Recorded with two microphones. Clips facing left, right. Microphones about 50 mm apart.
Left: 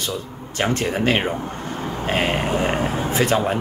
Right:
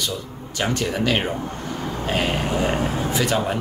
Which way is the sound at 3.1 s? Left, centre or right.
Left.